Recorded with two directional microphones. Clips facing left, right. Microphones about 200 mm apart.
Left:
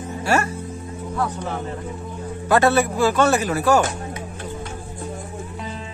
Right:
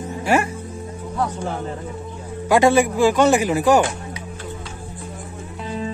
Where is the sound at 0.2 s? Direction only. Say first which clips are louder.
Right 2 dB; 15° right (ahead or behind).